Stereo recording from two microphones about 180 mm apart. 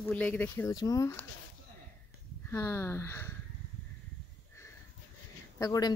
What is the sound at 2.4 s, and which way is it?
Speech, 15° left (ahead or behind).